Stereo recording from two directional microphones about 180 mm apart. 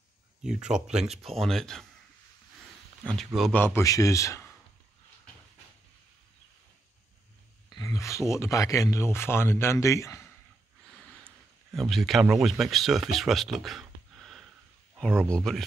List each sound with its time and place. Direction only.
0.4 s speech: 5° right (ahead or behind)
3.0 s speech: 5° left (ahead or behind)
7.7 s a sound: 15° left (ahead or behind)
8.3 s speech: 15° left (ahead or behind)
11.7 s speech: centre (ahead or behind)